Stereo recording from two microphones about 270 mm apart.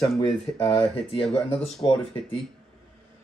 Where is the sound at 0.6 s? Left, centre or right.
Centre.